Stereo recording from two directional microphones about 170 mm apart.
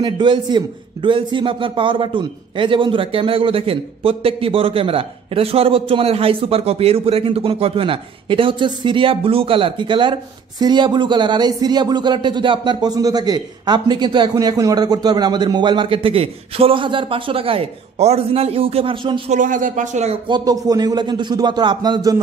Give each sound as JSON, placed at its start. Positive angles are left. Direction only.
{"t": 0.0, "sound": "a man's voice", "side_deg": -25}
{"t": 19.3, "sound": "speech", "side_deg": -50}
{"t": 20.2, "sound": "speech", "side_deg": -25}